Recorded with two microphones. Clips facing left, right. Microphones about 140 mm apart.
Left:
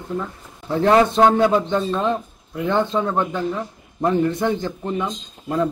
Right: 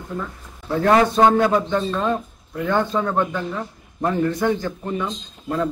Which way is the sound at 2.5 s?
20° left (ahead or behind).